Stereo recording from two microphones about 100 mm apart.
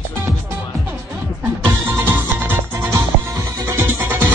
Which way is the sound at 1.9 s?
20° right (ahead or behind).